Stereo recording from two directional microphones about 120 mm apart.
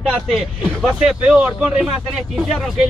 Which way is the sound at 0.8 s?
5° right (ahead or behind).